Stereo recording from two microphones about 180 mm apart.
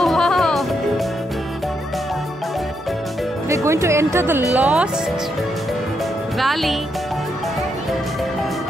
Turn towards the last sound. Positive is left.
turn(degrees=0)  # may be behind; listen again after turning